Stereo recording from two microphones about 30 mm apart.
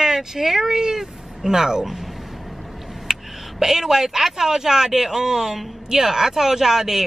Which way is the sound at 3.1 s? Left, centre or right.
Centre.